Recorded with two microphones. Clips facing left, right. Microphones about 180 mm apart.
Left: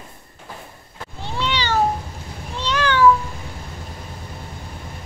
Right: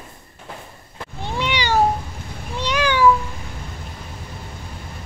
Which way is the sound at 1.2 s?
15° right (ahead or behind).